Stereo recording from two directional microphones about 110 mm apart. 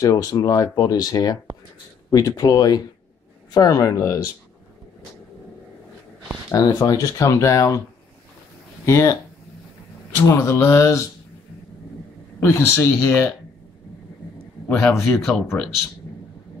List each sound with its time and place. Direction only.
0.0 s speech: 30° left (ahead or behind)
6.5 s speech: 35° left (ahead or behind)
8.8 s speech: 30° left (ahead or behind)
10.2 s speech: 25° left (ahead or behind)
12.4 s speech: 20° left (ahead or behind)
14.7 s speech: 20° left (ahead or behind)